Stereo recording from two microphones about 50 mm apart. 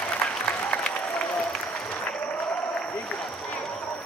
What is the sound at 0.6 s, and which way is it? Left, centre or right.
Applause, centre.